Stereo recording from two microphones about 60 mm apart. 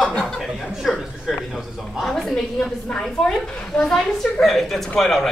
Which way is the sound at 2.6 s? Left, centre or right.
Centre.